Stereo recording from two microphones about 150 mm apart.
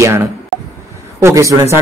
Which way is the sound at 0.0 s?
20° right (ahead or behind).